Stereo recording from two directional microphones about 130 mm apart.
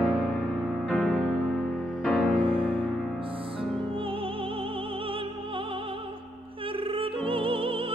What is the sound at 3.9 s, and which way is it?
Music, 45° right (ahead or behind).